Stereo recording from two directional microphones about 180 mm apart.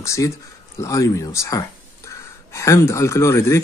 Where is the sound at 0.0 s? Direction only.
15° left (ahead or behind).